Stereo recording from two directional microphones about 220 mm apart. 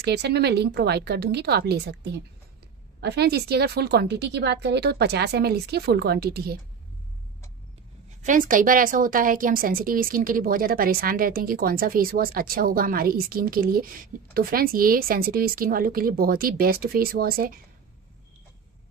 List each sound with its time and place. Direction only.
0.0 s a woman's voice: 50° right (ahead or behind)
8.2 s a woman's voice: 35° right (ahead or behind)